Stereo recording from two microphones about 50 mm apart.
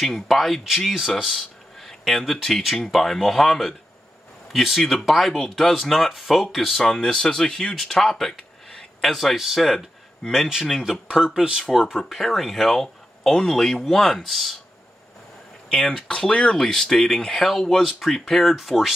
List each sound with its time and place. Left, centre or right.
0.0 s speech: centre
7.7 s a sound: centre
9.1 s speech: centre
10.5 s speech: centre
11.9 s speech: centre
15.7 s speech: centre